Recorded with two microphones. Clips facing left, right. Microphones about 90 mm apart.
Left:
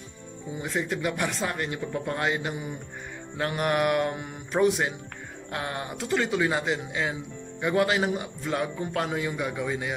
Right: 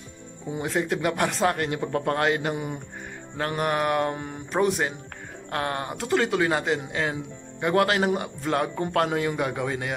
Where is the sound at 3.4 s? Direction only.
35° right (ahead or behind).